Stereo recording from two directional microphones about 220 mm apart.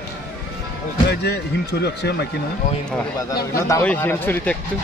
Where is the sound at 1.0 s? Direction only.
50° left (ahead or behind).